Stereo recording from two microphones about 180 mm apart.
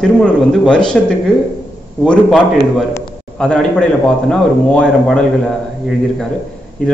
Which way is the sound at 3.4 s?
5° left (ahead or behind).